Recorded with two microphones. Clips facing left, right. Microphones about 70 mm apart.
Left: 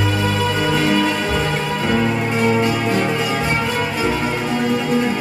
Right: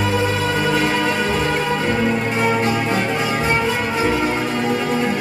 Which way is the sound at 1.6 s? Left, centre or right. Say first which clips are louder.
Even; centre.